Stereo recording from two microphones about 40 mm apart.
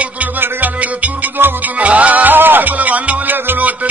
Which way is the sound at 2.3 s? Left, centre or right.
Right.